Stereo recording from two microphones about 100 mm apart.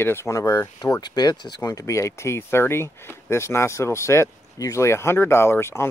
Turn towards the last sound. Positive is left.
turn(degrees=25)  # may be behind; listen again after turning